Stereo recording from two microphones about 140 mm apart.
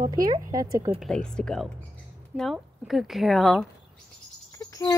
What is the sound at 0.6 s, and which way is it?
Speech, 25° right (ahead or behind).